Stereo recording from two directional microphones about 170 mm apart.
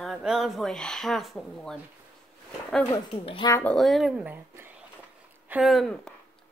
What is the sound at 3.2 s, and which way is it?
Speech, 30° left (ahead or behind).